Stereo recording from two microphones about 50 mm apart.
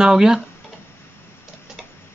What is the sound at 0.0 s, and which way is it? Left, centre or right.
Speech, centre.